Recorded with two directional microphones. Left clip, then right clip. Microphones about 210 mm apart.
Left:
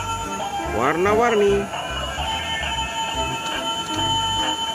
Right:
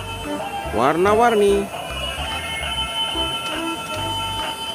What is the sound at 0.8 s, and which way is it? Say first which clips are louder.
Music: right 3 dB; 15° right (ahead or behind).